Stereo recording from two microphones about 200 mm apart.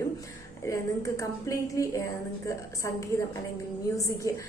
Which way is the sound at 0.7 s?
15° left (ahead or behind).